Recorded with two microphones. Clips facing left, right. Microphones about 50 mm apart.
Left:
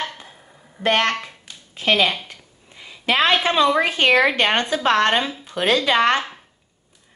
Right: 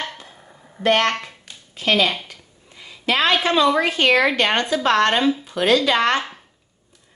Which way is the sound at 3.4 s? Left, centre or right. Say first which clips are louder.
Even; centre.